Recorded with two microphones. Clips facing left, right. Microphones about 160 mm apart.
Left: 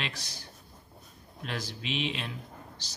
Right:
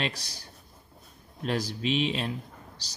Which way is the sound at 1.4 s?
35° right (ahead or behind).